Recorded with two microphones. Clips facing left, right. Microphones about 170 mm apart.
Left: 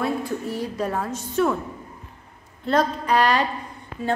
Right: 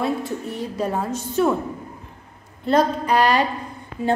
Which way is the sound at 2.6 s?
5° right (ahead or behind).